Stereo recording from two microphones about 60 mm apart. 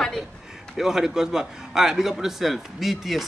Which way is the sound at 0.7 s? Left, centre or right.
Centre.